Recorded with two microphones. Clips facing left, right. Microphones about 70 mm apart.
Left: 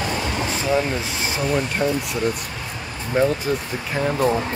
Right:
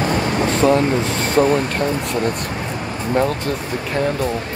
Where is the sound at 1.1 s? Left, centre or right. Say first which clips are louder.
Right 9 dB; centre.